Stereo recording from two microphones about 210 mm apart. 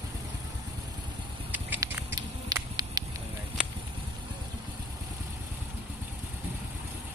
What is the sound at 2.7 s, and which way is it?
Fire, 20° right (ahead or behind).